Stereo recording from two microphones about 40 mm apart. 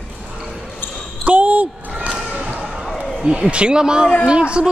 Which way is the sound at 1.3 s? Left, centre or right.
Right.